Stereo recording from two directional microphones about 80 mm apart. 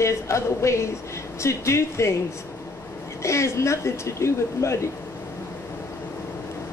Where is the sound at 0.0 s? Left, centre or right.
Left.